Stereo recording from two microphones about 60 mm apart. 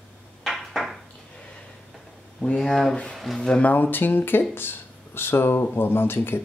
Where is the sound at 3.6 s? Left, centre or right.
Left.